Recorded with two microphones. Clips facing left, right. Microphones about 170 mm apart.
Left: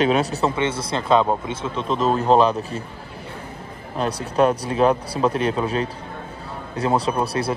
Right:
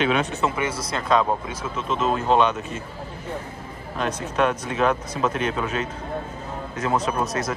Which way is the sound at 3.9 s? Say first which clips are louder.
Left 3 dB; 35° left (ahead or behind).